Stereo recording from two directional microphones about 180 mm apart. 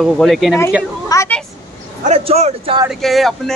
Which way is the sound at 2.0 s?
35° right (ahead or behind).